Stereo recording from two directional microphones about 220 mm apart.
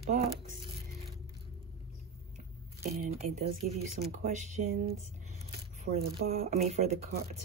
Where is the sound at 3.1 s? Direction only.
30° right (ahead or behind).